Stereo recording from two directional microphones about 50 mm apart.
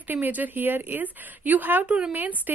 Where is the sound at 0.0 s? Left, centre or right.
Right.